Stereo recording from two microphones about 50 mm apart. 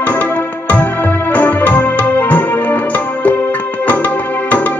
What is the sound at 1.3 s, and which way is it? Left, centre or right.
Music, left.